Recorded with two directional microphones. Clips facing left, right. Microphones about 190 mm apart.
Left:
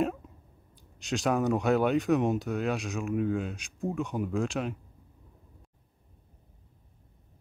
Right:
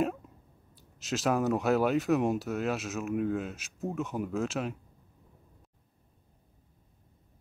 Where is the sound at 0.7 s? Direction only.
Centre (ahead or behind).